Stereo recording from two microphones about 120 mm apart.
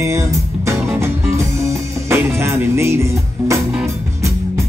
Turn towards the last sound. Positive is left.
turn(degrees=-25)  # may be behind; listen again after turning